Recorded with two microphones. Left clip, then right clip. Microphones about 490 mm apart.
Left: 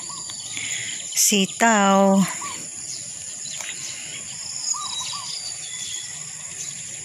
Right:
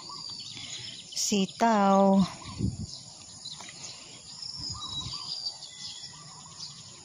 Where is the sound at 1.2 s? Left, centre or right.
Right.